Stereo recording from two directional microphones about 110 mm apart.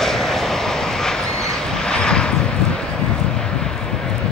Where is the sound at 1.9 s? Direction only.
10° left (ahead or behind).